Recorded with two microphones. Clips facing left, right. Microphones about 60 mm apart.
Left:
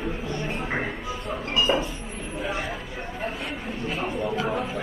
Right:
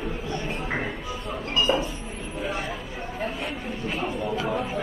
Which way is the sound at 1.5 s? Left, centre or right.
Centre.